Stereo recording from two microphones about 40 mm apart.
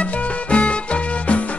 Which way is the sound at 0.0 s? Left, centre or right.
Left.